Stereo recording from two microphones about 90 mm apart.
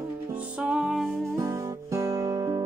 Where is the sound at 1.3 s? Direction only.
35° right (ahead or behind).